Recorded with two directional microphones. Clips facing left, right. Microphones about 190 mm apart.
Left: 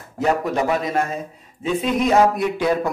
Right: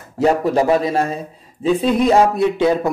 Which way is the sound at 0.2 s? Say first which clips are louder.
Right 5 dB; 30° right (ahead or behind).